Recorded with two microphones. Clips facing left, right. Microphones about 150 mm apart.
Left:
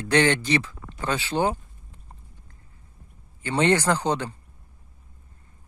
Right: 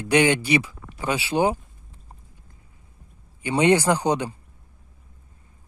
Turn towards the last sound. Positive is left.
turn(degrees=-15)  # may be behind; listen again after turning